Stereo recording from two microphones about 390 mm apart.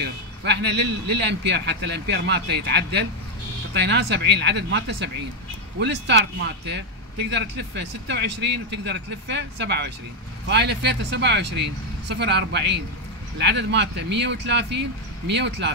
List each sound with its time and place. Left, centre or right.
0.0 s speech: right